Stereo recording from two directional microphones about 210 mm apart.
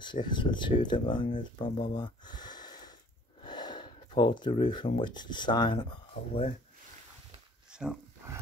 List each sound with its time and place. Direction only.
0.0 s speech: 20° left (ahead or behind)
2.0 s a sound: 20° left (ahead or behind)
3.4 s speech: 20° left (ahead or behind)
7.7 s roaring cats: 5° right (ahead or behind)